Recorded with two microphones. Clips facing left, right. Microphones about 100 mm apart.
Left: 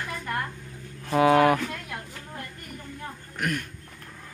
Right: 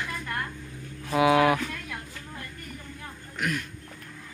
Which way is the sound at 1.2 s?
40° left (ahead or behind).